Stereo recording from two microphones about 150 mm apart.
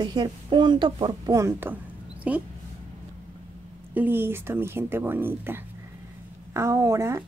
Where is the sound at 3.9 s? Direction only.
15° right (ahead or behind).